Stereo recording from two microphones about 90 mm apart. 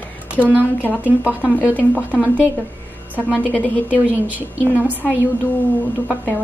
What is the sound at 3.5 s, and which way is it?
Speech, 15° left (ahead or behind).